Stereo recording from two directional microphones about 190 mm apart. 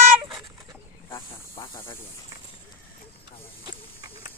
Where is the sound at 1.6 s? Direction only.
20° left (ahead or behind).